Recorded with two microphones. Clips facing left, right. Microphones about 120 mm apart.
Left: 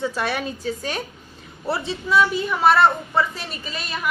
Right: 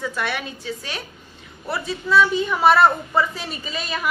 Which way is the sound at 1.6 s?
30° left (ahead or behind).